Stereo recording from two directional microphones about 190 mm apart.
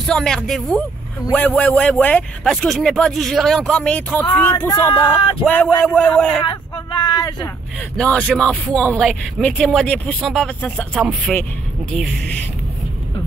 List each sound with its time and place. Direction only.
0.0 s a man's voice: 5° left (ahead or behind)
6.4 s a sound: 25° left (ahead or behind)
8.0 s a man's voice: 5° left (ahead or behind)